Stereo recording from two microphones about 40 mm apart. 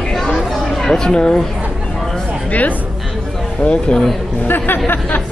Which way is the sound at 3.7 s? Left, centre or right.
Left.